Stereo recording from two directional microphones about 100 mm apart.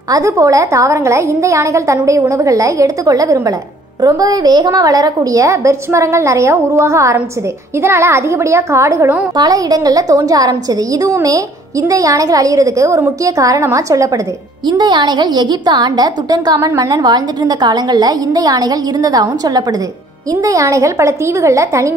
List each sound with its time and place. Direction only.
0.1 s a woman's voice: 30° right (ahead or behind)
9.4 s a woman's voice: 40° right (ahead or behind)
14.7 s a woman's voice: 45° right (ahead or behind); by 21.9 s 30° right (ahead or behind)